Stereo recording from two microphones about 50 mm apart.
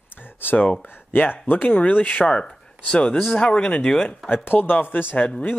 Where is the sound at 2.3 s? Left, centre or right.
Left.